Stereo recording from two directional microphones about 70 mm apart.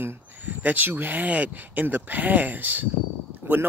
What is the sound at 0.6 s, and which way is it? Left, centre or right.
A man's voice, right.